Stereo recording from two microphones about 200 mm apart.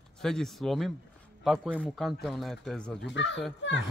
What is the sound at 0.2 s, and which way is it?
Speech, centre (ahead or behind).